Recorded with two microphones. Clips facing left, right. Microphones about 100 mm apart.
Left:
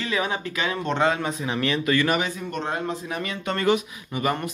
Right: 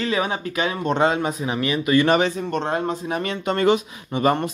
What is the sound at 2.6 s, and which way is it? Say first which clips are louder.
Speech: right 2 dB; 40° right (ahead or behind).